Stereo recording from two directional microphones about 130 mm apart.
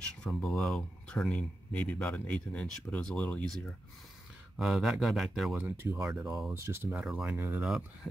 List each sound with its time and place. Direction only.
0.0 s speech: 5° left (ahead or behind)
4.6 s speech: 5° right (ahead or behind)
5.6 s speech: 15° right (ahead or behind)
6.2 s speech: centre (ahead or behind)
6.5 s speech: 20° right (ahead or behind); by 8.1 s 5° right (ahead or behind)